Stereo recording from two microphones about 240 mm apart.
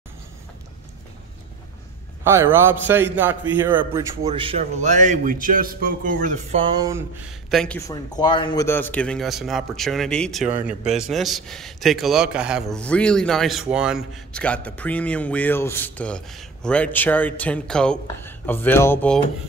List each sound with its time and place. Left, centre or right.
2.2 s a man's voice: centre
4.2 s a man's voice: right
6.6 s a man's voice: centre
7.5 s a man's voice: centre
7.9 s a man's voice: centre